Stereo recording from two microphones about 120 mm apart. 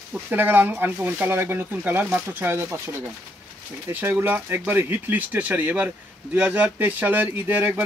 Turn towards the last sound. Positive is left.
turn(degrees=-15)  # may be behind; listen again after turning